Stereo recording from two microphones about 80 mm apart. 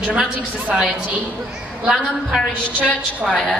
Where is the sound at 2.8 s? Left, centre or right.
Centre.